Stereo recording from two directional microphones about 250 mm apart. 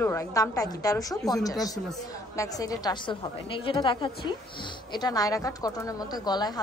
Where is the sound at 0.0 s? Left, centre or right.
Centre.